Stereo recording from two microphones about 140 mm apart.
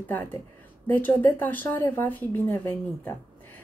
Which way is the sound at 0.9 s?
15° left (ahead or behind).